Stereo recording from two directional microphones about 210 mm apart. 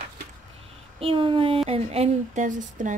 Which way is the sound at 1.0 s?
25° right (ahead or behind).